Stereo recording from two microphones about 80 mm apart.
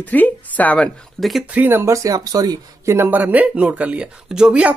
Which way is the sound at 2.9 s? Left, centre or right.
Right.